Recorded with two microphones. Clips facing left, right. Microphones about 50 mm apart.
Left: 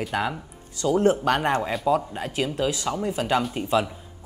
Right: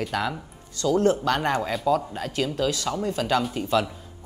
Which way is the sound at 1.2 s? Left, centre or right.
Left.